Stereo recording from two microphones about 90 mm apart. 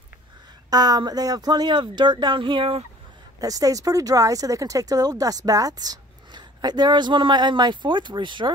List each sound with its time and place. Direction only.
0.7 s speech: 45° right (ahead or behind); by 2.8 s 80° right
3.3 s speech: 40° right (ahead or behind); by 8.5 s 60° right (ahead or behind)